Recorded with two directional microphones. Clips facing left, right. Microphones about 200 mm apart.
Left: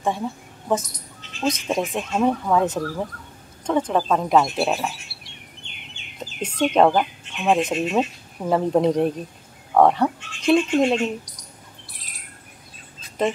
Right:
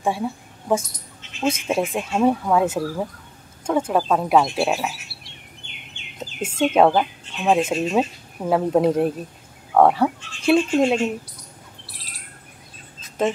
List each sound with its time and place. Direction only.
0.0 s a woman's voice: 10° right (ahead or behind)
6.6 s speech: 5° right (ahead or behind)